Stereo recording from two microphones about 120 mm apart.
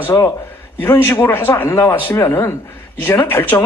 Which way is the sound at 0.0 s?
20° left (ahead or behind).